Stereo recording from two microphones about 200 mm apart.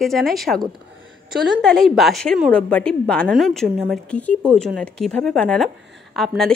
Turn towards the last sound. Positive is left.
turn(degrees=0)  # may be behind; listen again after turning